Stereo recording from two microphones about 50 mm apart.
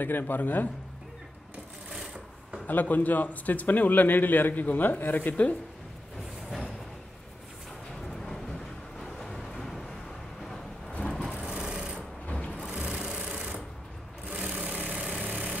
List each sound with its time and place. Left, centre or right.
0.0 s a man's voice: left
2.6 s a man's voice: left
8.3 s vehicle: centre
10.9 s vehicle: left
11.3 s vehicle: centre
12.3 s a sound: left
12.5 s music: centre
13.0 s sewing machine: centre
14.9 s vehicle: centre